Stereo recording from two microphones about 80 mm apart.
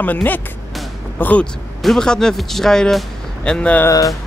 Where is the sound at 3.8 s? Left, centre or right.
Left.